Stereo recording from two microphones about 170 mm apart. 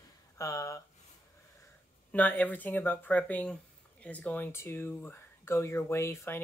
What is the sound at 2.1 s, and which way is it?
Speech, 10° left (ahead or behind).